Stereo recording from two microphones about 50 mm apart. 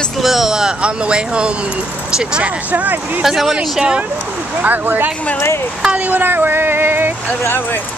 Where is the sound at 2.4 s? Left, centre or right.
Right.